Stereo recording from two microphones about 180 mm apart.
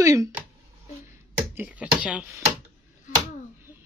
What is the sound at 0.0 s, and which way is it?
Speech, 15° right (ahead or behind).